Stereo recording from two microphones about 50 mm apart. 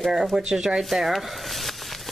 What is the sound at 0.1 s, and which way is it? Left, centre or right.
Speech, centre.